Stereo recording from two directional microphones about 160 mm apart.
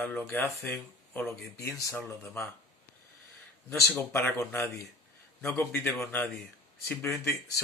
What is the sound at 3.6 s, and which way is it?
Speech, 15° left (ahead or behind).